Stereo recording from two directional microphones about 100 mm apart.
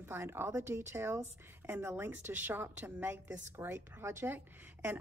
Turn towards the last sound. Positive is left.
turn(degrees=-20)  # may be behind; listen again after turning